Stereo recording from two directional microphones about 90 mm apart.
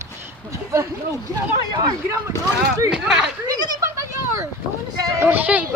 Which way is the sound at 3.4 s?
50° right (ahead or behind).